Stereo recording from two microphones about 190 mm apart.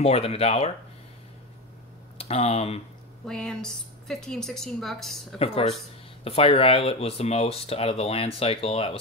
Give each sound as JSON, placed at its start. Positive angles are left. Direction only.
{"t": 0.0, "sound": "speech", "side_deg": 30}
{"t": 2.1, "sound": "speech", "side_deg": 30}
{"t": 3.3, "sound": "a woman's voice", "side_deg": 5}
{"t": 5.4, "sound": "speech", "side_deg": 30}